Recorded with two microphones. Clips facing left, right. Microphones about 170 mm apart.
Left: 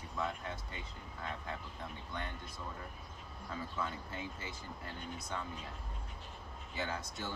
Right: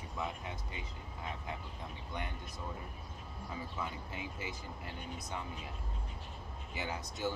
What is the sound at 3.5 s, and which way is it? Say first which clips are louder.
Speech: left 2 dB; 15° right (ahead or behind).